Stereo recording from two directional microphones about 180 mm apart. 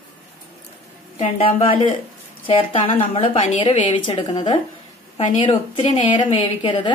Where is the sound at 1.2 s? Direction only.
35° left (ahead or behind).